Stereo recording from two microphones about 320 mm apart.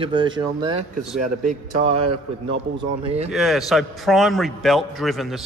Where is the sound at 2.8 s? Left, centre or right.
Centre.